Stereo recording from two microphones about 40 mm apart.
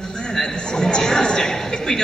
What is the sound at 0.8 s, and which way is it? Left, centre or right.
A man's voice, centre.